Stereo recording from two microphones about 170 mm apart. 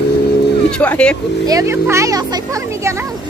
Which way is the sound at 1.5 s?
15° right (ahead or behind).